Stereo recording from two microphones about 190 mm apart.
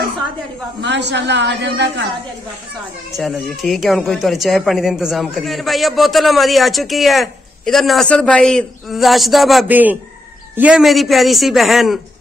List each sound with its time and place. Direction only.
0.7 s a woman's voice: 65° right (ahead or behind)
3.2 s speech: centre (ahead or behind)